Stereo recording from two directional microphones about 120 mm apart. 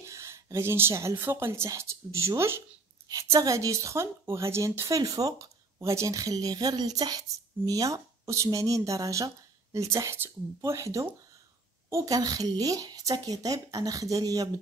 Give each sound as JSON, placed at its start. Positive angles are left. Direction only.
{"t": 0.0, "sound": "a woman's voice", "side_deg": -25}